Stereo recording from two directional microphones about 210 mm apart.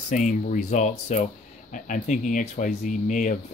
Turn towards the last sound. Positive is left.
turn(degrees=35)  # may be behind; listen again after turning